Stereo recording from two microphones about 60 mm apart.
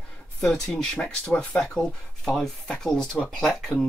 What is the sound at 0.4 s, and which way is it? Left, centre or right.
Speech, centre.